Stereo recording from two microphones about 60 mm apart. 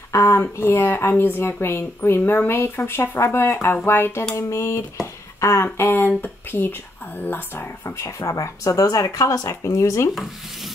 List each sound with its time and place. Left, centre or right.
0.1 s speech: left
4.4 s speech: left
7.8 s speech: left
9.6 s speech: left